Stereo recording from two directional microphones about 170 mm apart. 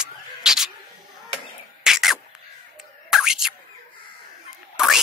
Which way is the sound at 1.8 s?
Centre (ahead or behind).